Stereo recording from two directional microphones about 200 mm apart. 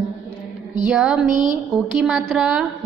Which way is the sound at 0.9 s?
5° right (ahead or behind).